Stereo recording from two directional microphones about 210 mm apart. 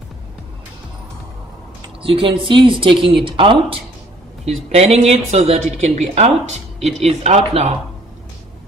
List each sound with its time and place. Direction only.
1.8 s a woman's voice: 25° right (ahead or behind)